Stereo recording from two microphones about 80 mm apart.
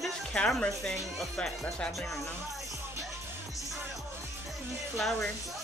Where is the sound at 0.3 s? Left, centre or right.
Centre.